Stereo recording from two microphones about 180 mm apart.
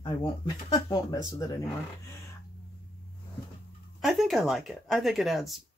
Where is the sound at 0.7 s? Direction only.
20° left (ahead or behind).